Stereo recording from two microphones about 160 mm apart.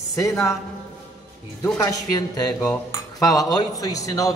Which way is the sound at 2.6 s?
10° left (ahead or behind).